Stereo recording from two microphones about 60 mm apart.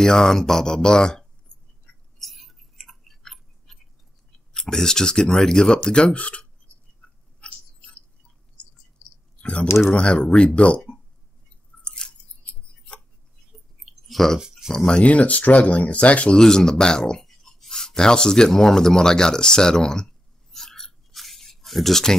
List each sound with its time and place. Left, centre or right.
0.0 s speech: centre
2.1 s tick-tock: centre
4.6 s speech: centre
7.0 s a sound: centre
9.4 s speech: centre
11.8 s scissors: centre
13.5 s a sound: centre
14.0 s speech: centre
15.0 s speech: left
16.3 s speech: centre
20.5 s a sound: centre